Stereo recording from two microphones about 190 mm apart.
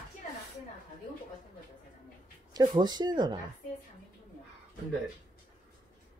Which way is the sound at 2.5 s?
20° right (ahead or behind).